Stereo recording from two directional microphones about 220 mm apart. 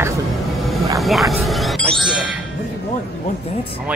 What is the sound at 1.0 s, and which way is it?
Speech, centre (ahead or behind).